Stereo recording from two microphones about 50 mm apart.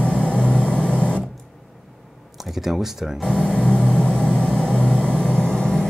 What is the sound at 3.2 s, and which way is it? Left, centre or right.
Vehicle, centre.